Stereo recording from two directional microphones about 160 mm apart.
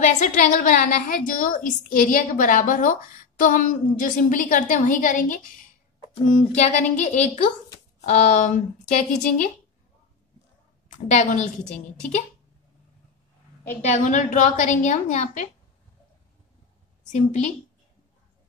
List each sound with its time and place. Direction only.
0.0 s a woman's voice: 50° left (ahead or behind)
11.1 s a woman's voice: 45° left (ahead or behind)
13.8 s a woman's voice: 50° left (ahead or behind)
17.1 s a woman's voice: 45° left (ahead or behind)